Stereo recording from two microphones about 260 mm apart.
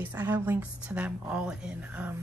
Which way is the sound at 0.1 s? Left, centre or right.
Centre.